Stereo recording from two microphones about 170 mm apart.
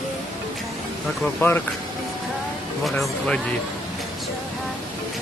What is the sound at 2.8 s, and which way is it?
Speech, centre (ahead or behind).